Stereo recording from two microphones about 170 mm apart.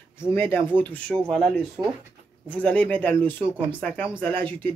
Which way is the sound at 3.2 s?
30° right (ahead or behind).